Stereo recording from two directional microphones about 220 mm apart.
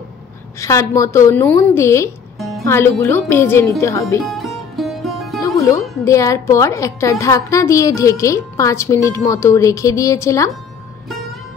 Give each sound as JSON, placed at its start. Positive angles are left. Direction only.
{"t": 0.6, "sound": "a woman's voice", "side_deg": 15}
{"t": 2.3, "sound": "music", "side_deg": 0}
{"t": 2.6, "sound": "a woman's voice", "side_deg": 10}
{"t": 4.2, "sound": "music", "side_deg": 0}
{"t": 5.6, "sound": "a woman's voice", "side_deg": 15}